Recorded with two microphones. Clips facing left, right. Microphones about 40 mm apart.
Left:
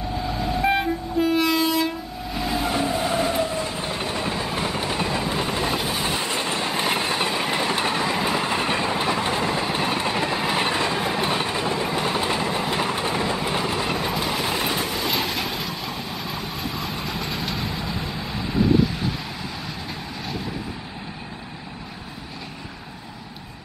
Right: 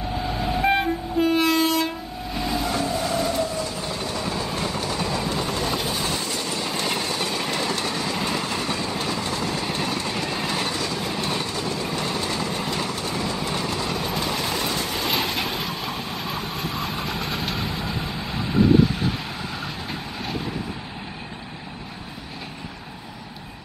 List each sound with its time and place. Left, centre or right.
0.1 s train: centre
2.6 s train: left
14.1 s vehicle: centre
14.9 s vehicle: centre